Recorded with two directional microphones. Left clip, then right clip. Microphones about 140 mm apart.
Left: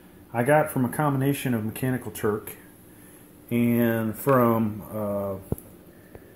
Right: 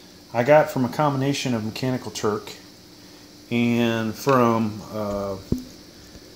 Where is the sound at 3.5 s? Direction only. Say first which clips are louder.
Right 2 dB; 5° left (ahead or behind).